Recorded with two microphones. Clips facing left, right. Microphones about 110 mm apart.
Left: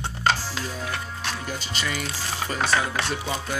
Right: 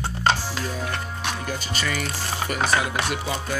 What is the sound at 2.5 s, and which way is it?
Music, 20° right (ahead or behind).